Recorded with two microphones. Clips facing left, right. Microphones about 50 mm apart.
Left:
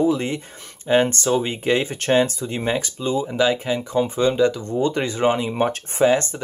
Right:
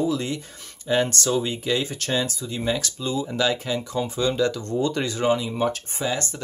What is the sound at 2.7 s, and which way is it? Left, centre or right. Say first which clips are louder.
Speech: left 4 dB; left.